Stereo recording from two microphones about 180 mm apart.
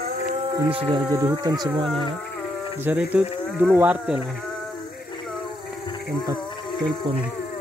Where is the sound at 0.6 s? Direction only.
30° right (ahead or behind).